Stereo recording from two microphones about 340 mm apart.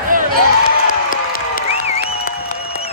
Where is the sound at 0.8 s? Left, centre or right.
Left.